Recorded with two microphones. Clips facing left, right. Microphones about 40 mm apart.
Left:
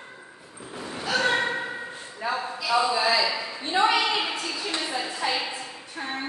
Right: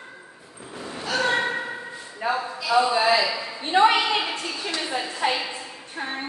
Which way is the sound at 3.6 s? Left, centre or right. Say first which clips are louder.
Right 4 dB; right.